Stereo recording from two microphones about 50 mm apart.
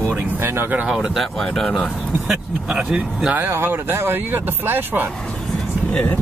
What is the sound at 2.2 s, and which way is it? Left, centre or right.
Speech, centre.